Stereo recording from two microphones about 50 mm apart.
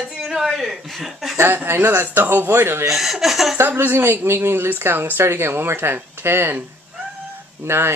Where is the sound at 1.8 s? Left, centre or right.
Right.